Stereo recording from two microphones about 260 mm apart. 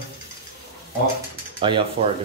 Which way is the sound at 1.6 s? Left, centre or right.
Centre.